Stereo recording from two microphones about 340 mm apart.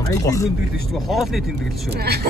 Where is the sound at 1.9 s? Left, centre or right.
Right.